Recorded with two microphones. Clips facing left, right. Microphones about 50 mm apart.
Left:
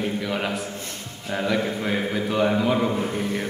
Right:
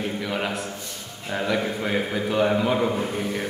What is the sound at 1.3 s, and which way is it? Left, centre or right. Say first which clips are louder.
A man's voice: left 1 dB; centre.